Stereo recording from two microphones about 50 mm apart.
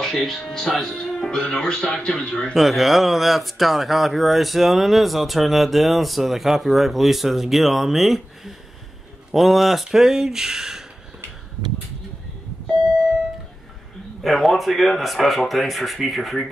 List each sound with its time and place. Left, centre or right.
0.0 s speech: centre
2.5 s speech: centre
14.2 s speech: centre